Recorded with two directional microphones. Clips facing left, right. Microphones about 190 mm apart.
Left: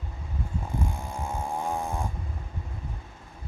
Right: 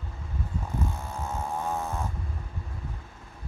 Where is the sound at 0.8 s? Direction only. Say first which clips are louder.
Even; 10° left (ahead or behind).